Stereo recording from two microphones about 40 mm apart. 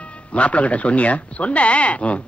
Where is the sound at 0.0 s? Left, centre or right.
Left.